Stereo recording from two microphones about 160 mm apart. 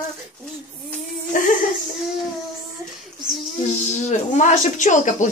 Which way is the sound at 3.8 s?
45° left (ahead or behind).